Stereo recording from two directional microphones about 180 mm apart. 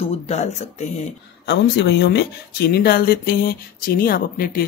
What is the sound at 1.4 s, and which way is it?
Speech, 70° left (ahead or behind).